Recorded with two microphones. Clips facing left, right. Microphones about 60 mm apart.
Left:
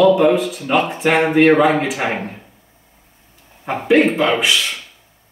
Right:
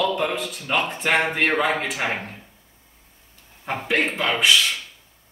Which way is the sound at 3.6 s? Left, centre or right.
Centre.